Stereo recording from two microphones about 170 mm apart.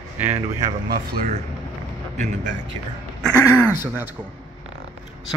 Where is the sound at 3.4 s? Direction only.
15° left (ahead or behind).